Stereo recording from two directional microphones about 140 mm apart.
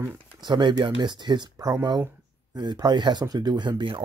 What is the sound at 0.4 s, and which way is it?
Speech, 35° right (ahead or behind).